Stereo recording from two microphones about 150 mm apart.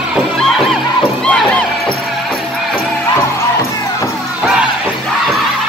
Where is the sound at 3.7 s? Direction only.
20° left (ahead or behind).